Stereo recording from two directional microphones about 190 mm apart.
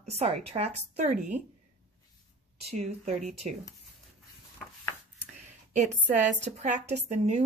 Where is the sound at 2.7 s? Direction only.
35° right (ahead or behind).